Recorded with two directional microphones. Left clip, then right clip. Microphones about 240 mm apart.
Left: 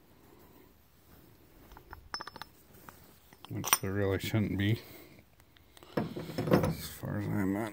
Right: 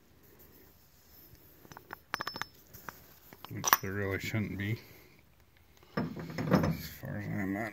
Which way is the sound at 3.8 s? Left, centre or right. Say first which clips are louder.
Left 3 dB; left.